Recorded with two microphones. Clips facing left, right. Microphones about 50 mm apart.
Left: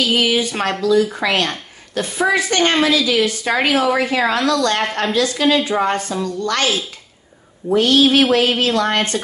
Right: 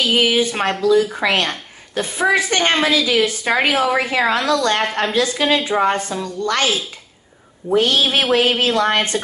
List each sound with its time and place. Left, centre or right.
0.0 s a woman's voice: right
7.7 s a woman's voice: right